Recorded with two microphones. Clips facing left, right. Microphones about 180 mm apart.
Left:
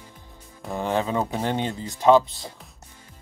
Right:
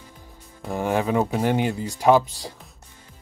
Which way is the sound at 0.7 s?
15° right (ahead or behind).